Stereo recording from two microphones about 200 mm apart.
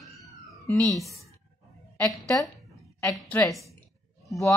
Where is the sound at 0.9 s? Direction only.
Centre (ahead or behind).